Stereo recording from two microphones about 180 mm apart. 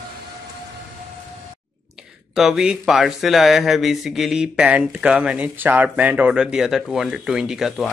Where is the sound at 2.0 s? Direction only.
Centre (ahead or behind).